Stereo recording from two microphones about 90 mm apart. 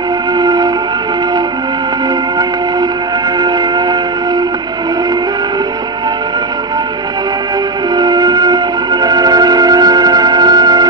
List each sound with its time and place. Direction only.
0.4 s music: 50° right (ahead or behind)
3.3 s train: 55° right (ahead or behind)
7.9 s music: 50° right (ahead or behind)